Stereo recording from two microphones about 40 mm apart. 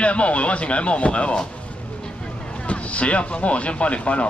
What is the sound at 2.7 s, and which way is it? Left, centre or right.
Speech, left.